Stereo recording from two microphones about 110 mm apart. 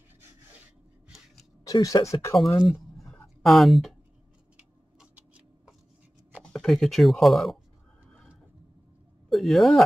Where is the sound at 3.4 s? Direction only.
Centre (ahead or behind).